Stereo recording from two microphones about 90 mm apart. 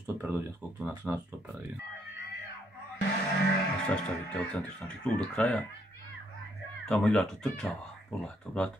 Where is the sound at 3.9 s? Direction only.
15° left (ahead or behind).